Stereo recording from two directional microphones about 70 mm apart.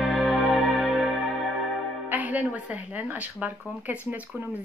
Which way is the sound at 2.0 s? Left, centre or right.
Right.